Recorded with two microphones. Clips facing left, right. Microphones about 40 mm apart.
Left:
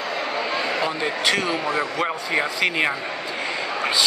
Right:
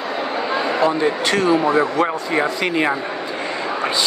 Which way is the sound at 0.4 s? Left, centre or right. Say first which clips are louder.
Right 6 dB; centre.